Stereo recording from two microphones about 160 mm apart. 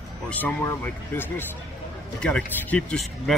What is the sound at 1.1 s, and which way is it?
Speech, 15° left (ahead or behind).